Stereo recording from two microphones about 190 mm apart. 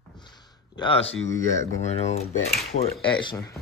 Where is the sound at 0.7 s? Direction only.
30° left (ahead or behind).